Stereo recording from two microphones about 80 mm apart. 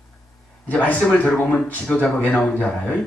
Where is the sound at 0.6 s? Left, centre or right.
Centre.